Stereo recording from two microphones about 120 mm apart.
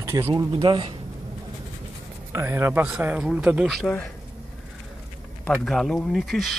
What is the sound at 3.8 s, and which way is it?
Speech, 10° left (ahead or behind).